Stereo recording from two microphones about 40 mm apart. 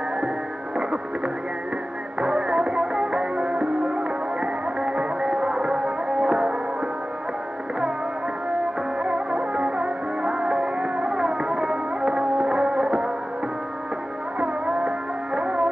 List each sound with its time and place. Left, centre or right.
2.1 s music: right
9.0 s music: right
14.4 s music: right